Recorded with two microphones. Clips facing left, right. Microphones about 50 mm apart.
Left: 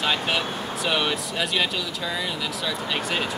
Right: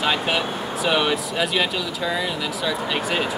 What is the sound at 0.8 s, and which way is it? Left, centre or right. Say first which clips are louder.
Speech: right 4 dB; centre.